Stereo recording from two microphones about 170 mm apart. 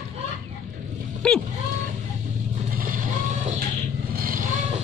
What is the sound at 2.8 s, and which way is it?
Vehicle, 55° right (ahead or behind).